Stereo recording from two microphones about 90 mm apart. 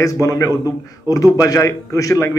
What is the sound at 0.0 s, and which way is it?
A man's voice, 40° left (ahead or behind).